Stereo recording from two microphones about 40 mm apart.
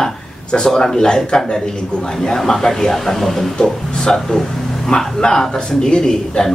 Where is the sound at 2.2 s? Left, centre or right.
Centre.